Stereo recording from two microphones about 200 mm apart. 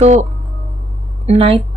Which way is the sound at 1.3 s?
25° right (ahead or behind).